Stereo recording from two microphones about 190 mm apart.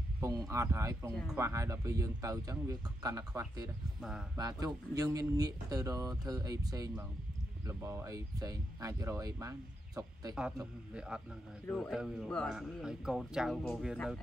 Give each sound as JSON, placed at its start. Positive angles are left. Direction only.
{"t": 0.2, "sound": "speech", "side_deg": -20}
{"t": 4.0, "sound": "a man's voice", "side_deg": 0}
{"t": 4.4, "sound": "speech", "side_deg": -20}
{"t": 10.9, "sound": "a man's voice", "side_deg": -5}